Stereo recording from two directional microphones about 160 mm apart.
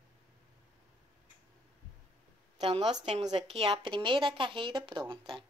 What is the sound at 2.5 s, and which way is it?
A woman's voice, 40° right (ahead or behind).